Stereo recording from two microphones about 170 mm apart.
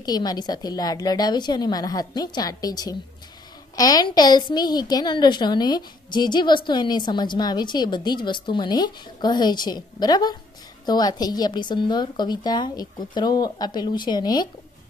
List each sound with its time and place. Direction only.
0.0 s a woman's voice: 25° left (ahead or behind)